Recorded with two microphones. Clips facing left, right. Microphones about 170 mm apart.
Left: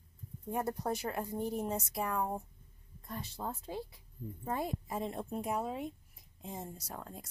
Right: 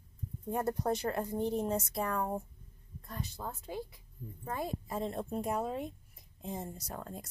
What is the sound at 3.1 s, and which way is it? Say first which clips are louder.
Speech: left 1 dB; 25° left (ahead or behind).